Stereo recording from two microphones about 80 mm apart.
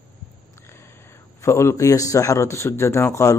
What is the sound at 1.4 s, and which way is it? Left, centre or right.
Speech, left.